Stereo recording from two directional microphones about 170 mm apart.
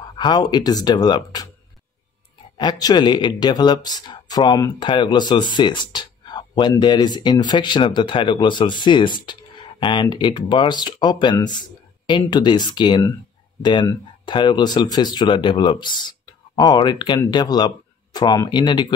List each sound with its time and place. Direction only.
0.2 s speech: 25° left (ahead or behind)
2.5 s speech: 25° left (ahead or behind)